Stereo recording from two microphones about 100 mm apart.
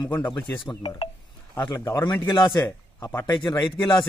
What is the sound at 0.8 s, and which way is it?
Speech, 70° left (ahead or behind).